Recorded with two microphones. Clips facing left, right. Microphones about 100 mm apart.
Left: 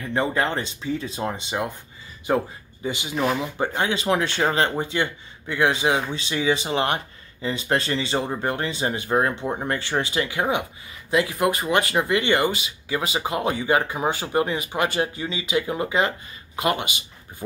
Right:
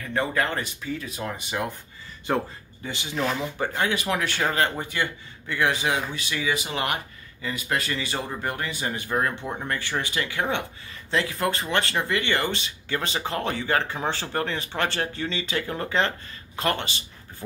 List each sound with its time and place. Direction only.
0.0 s speech: 20° left (ahead or behind)